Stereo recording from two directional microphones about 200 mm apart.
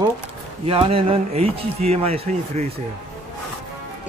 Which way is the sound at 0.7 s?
30° right (ahead or behind).